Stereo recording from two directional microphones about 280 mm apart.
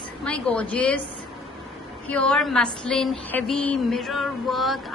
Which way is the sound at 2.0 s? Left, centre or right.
Centre.